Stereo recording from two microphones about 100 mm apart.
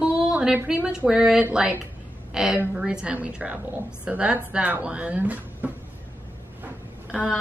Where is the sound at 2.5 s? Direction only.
10° right (ahead or behind).